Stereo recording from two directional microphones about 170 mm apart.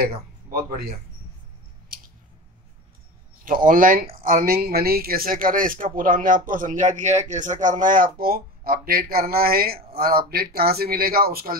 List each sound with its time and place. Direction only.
0.0 s speech: 60° right (ahead or behind)
3.4 s speech: 55° right (ahead or behind)